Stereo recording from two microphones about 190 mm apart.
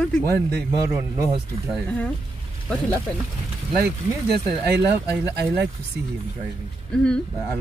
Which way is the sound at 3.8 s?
60° right (ahead or behind).